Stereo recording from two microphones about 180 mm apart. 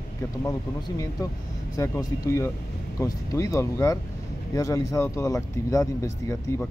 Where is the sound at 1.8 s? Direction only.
15° left (ahead or behind).